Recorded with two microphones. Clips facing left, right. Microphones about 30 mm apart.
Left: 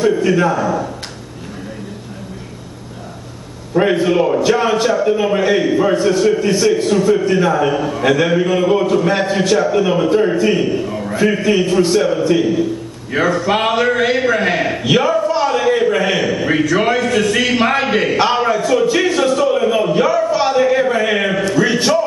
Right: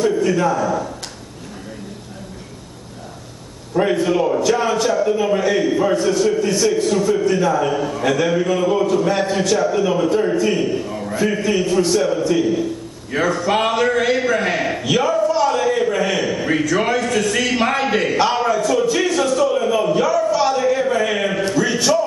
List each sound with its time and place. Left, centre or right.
0.0 s a man's voice: left
3.7 s a man's voice: left
13.1 s a sound: centre